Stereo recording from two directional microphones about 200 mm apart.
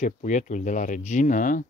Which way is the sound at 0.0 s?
35° left (ahead or behind).